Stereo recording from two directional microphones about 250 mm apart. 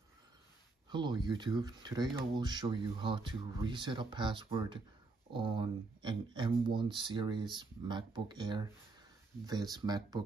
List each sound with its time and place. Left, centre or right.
0.8 s speech: centre